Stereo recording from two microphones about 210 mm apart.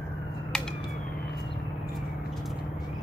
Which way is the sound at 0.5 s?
5° left (ahead or behind).